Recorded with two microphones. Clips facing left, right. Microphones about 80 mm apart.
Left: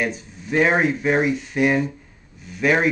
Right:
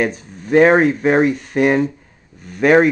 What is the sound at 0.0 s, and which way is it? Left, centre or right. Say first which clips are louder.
Speech: right 5 dB; right.